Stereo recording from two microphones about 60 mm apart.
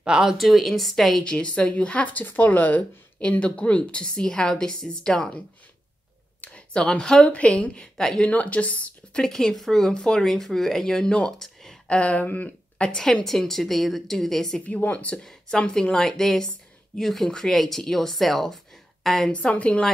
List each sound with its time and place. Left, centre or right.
0.0 s speech: centre
1.2 s speech: centre
6.4 s a sound: centre
7.2 s a woman's voice: left
8.3 s speech: left
9.2 s a woman's voice: centre
11.3 s a sound: centre
11.9 s a woman's voice: left; by 14.6 s centre
14.7 s speech: left
15.2 s a woman's voice: centre
19.3 s speech: left